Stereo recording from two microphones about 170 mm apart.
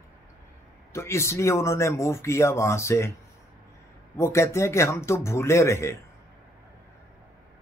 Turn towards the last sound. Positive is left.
turn(degrees=15)  # may be behind; listen again after turning